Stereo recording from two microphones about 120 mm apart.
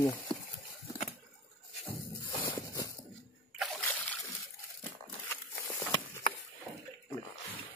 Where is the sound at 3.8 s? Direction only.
15° left (ahead or behind).